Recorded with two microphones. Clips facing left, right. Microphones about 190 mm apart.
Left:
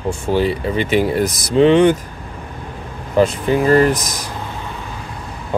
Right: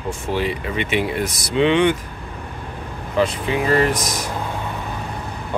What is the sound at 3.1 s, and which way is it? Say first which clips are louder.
Speech: left 5 dB; 45° left (ahead or behind).